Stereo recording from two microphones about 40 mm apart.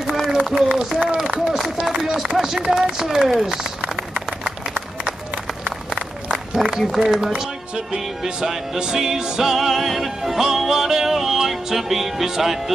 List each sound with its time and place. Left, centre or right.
0.3 s a sound: centre
1.1 s run: centre
2.3 s music: centre
6.6 s music: centre